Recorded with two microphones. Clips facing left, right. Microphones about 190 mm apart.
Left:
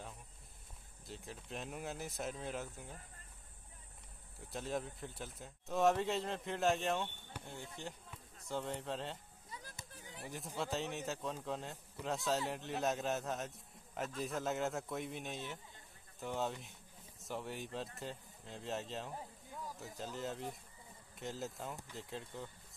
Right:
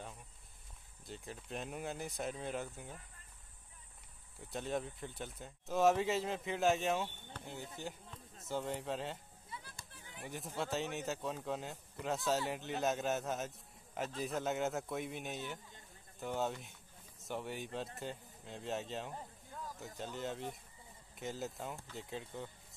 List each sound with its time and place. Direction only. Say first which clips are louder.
1.0 s a man's voice: right 2 dB; centre (ahead or behind)
4.5 s a man's voice: right 2 dB; centre (ahead or behind)
9.5 s music: even; 40° left (ahead or behind)
10.2 s a man's voice: right 1 dB; centre (ahead or behind)
19.1 s a sound: even; 10° left (ahead or behind)
19.8 s a man's voice: right 1 dB; centre (ahead or behind)